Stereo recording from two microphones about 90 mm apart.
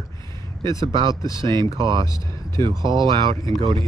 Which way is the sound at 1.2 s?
40° left (ahead or behind).